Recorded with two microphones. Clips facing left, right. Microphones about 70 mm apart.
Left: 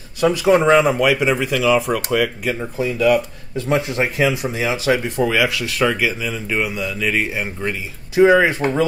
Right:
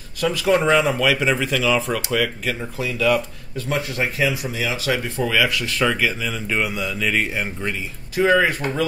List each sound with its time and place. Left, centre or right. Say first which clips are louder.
0.2 s speech: left 4 dB; centre
2.8 s speech: left 4 dB; left; by 7.7 s centre
8.2 s speech: left 5 dB; centre